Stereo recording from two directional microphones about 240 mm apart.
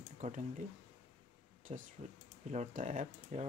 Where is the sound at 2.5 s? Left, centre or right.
Right.